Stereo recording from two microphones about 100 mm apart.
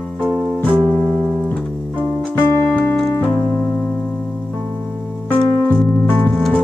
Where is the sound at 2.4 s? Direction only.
25° left (ahead or behind).